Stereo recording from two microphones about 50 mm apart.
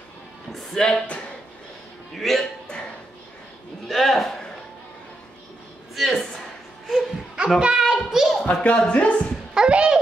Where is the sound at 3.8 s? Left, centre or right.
Centre.